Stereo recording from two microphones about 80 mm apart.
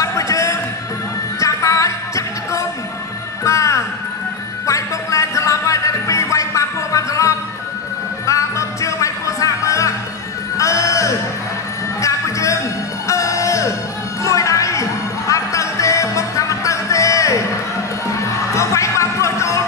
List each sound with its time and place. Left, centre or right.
0.0 s music: left